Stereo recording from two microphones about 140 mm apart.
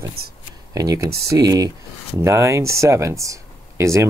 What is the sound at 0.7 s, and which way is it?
Speech, 25° right (ahead or behind).